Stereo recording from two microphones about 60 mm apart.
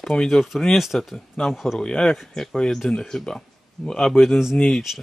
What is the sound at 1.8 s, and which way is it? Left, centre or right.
Speech, centre.